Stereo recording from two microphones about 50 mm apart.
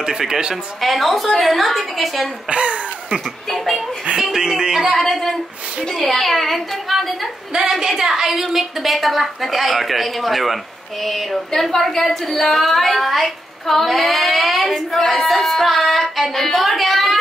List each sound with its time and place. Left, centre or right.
0.0 s speech: centre
0.7 s a woman's voice: centre
2.5 s speech: right
3.4 s a woman's voice: centre
4.2 s a sound: centre
4.8 s a sound: centre
5.9 s a woman's voice: centre
7.8 s a woman's voice: centre